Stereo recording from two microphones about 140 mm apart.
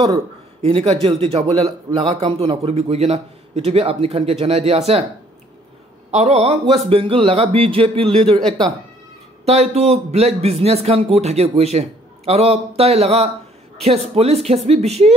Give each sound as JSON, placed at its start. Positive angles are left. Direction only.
{"t": 0.6, "sound": "a man's voice", "side_deg": -45}
{"t": 6.1, "sound": "a man's voice", "side_deg": -50}
{"t": 8.4, "sound": "speech", "side_deg": 5}
{"t": 9.4, "sound": "a man's voice", "side_deg": -50}